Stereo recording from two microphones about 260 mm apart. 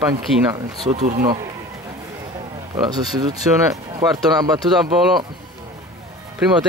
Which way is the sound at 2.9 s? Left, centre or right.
Centre.